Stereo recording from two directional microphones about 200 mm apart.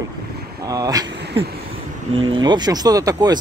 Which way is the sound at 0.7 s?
20° right (ahead or behind).